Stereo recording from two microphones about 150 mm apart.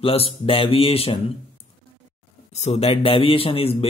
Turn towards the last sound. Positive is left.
turn(degrees=40)  # may be behind; listen again after turning